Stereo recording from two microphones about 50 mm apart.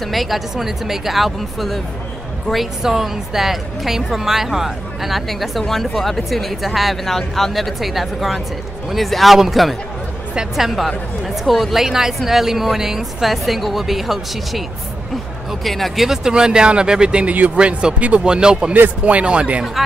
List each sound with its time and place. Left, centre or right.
0.0 s a woman's voice: centre
15.6 s speech: centre
16.1 s a woman's voice: centre